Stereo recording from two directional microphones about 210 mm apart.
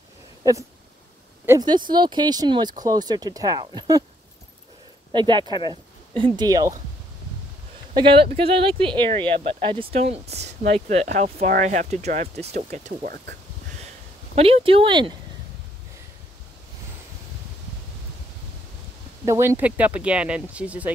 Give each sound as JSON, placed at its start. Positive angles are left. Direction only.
{"t": 0.4, "sound": "speech", "side_deg": -15}
{"t": 5.1, "sound": "speech", "side_deg": -20}
{"t": 5.4, "sound": "speech", "side_deg": 20}
{"t": 6.1, "sound": "speech", "side_deg": -20}
{"t": 7.9, "sound": "speech", "side_deg": -25}
{"t": 14.3, "sound": "speech", "side_deg": -25}
{"t": 19.2, "sound": "speech", "side_deg": -10}